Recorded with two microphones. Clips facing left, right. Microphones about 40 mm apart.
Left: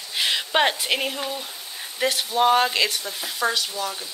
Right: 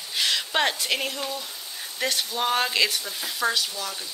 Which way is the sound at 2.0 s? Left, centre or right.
Centre.